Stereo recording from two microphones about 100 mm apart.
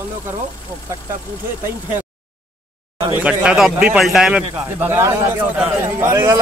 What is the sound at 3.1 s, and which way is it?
A man's voice, 15° right (ahead or behind).